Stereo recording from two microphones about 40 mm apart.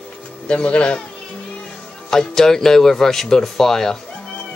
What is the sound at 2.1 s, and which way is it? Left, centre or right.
Speech, centre.